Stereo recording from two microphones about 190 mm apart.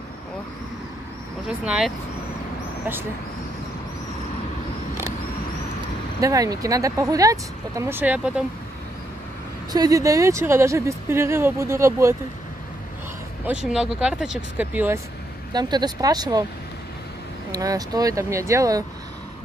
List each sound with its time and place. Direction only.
6.2 s speech: 20° right (ahead or behind)
9.7 s speech: 20° right (ahead or behind)
13.5 s speech: 5° right (ahead or behind)
15.5 s speech: 20° right (ahead or behind)
17.5 s speech: 20° right (ahead or behind)